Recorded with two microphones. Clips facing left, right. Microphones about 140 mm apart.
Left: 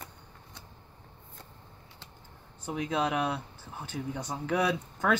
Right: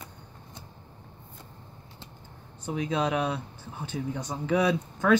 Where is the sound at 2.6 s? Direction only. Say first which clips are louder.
Right 2 dB; 5° left (ahead or behind).